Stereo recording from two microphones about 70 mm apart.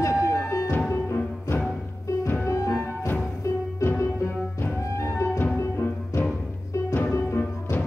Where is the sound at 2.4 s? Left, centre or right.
Left.